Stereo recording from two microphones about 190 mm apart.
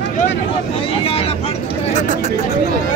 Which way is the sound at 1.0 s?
30° left (ahead or behind).